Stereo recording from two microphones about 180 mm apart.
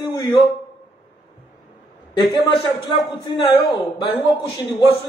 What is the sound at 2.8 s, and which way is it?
A man's voice, 25° left (ahead or behind).